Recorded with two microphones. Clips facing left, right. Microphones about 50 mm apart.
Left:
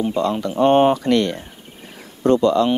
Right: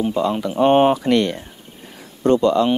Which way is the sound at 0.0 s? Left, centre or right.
Centre.